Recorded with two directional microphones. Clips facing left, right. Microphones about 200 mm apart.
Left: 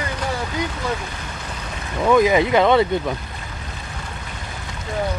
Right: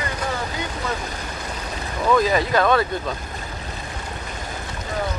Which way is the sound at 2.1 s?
15° left (ahead or behind).